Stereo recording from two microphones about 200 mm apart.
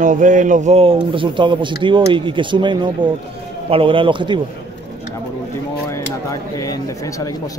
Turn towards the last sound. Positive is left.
turn(degrees=15)  # may be behind; listen again after turning